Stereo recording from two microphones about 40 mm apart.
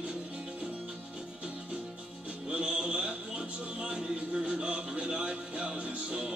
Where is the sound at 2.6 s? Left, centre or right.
Right.